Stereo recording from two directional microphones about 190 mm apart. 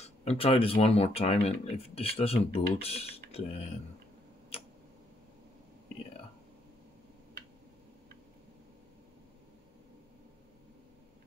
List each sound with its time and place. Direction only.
0.0 s speech: 35° left (ahead or behind)
4.5 s tick: 30° left (ahead or behind)